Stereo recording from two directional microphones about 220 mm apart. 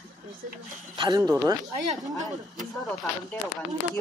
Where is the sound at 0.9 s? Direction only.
20° right (ahead or behind).